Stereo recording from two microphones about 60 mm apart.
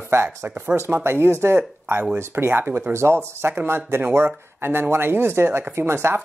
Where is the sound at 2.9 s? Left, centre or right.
Right.